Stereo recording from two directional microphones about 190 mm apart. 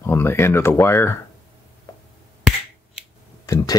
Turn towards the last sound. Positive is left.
turn(degrees=15)  # may be behind; listen again after turning